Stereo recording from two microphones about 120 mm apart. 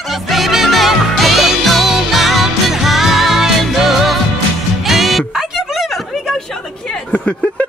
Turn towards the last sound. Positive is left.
turn(degrees=10)  # may be behind; listen again after turning